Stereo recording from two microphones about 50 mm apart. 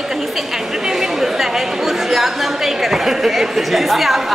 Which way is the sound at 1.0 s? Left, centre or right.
Centre.